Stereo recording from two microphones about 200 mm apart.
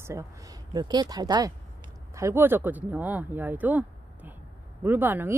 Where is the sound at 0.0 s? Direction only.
15° right (ahead or behind).